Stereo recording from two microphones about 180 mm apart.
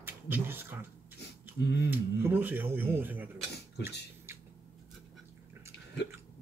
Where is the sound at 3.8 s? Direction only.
65° left (ahead or behind).